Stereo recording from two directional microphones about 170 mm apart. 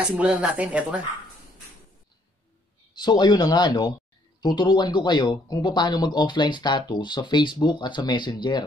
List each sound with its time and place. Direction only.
0.0 s speech: 5° right (ahead or behind)
2.9 s speech: 25° left (ahead or behind)